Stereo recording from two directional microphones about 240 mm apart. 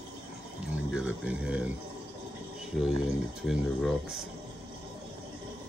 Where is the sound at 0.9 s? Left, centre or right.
Centre.